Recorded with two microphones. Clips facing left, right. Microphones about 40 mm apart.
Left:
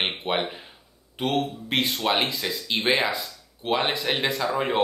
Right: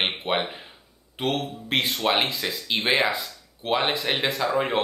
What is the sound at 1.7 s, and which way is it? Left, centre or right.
Speech, centre.